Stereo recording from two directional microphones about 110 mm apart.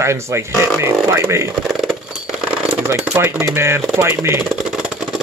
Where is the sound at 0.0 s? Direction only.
25° right (ahead or behind).